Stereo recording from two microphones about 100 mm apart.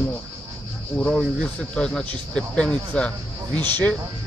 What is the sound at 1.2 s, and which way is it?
Speech, 10° left (ahead or behind).